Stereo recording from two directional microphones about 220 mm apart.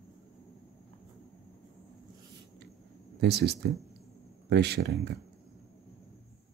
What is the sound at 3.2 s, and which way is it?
Speech, 50° right (ahead or behind).